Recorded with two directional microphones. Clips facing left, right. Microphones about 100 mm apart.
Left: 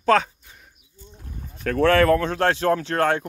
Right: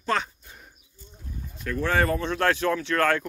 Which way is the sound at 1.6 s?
70° left (ahead or behind).